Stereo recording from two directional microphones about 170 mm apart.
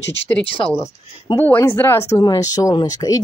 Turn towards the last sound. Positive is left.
turn(degrees=20)  # may be behind; listen again after turning